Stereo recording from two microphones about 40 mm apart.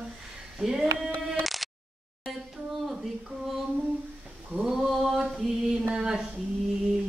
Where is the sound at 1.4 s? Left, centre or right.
Centre.